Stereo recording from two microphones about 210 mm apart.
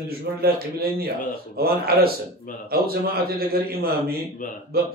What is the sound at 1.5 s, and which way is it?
A man's voice, 45° right (ahead or behind).